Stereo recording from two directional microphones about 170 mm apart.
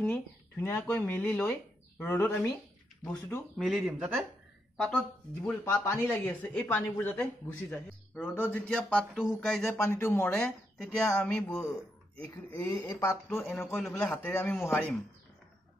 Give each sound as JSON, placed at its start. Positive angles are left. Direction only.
{"t": 0.0, "sound": "speech", "side_deg": 15}
{"t": 3.5, "sound": "speech", "side_deg": 0}
{"t": 5.9, "sound": "speech", "side_deg": 15}
{"t": 9.8, "sound": "speech", "side_deg": 15}
{"t": 13.7, "sound": "speech", "side_deg": 5}